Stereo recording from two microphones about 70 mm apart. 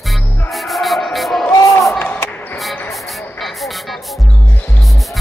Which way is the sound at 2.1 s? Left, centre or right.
Left.